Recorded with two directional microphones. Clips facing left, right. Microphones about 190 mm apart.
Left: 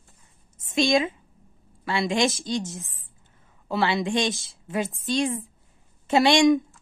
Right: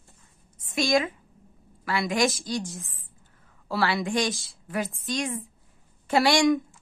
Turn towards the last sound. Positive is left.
turn(degrees=20)  # may be behind; listen again after turning